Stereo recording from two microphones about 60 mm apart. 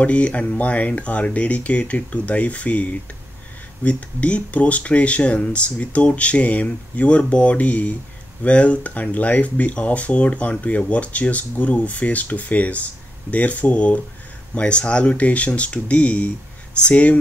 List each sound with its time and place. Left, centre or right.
0.0 s speech: left